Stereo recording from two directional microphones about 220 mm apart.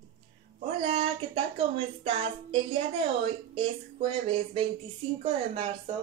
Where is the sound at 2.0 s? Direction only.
25° right (ahead or behind).